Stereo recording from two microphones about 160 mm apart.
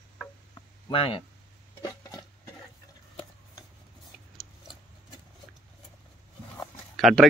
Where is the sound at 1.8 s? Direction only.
25° left (ahead or behind).